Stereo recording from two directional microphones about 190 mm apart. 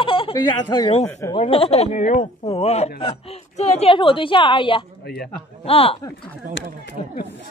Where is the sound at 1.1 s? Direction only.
15° left (ahead or behind).